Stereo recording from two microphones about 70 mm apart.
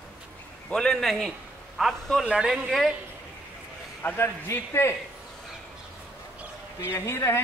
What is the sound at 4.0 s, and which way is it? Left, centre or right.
Speech, left.